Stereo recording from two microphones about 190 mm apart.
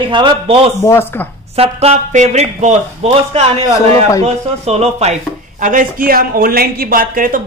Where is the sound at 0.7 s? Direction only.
15° left (ahead or behind).